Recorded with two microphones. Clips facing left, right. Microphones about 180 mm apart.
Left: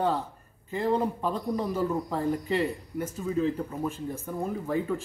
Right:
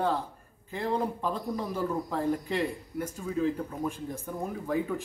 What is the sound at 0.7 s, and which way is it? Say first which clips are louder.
A man's voice: left 3 dB; 5° left (ahead or behind).